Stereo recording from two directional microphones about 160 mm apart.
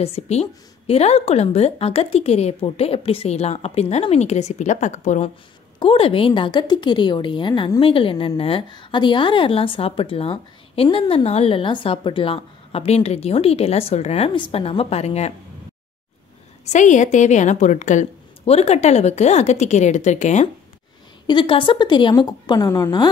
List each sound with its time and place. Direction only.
0.0 s a woman's voice: 40° left (ahead or behind)
5.8 s a woman's voice: 35° left (ahead or behind)
16.6 s a woman's voice: 50° left (ahead or behind)
21.3 s a woman's voice: 30° left (ahead or behind)